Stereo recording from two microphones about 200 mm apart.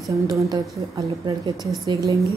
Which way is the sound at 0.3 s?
15° right (ahead or behind).